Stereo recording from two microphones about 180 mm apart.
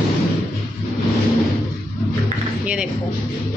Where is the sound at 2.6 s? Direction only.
5° right (ahead or behind).